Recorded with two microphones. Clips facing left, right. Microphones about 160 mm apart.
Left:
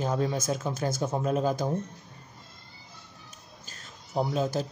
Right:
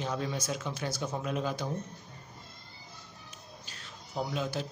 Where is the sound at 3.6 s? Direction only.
45° left (ahead or behind).